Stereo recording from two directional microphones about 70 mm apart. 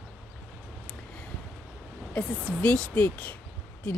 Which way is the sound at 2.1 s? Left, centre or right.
Centre.